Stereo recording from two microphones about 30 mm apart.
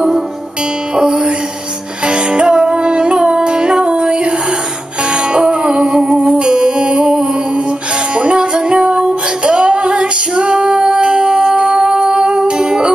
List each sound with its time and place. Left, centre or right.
0.9 s music: right
5.3 s music: right
8.5 s music: right
8.8 s female singing: right